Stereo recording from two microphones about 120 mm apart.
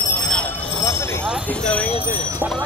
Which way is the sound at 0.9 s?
20° left (ahead or behind).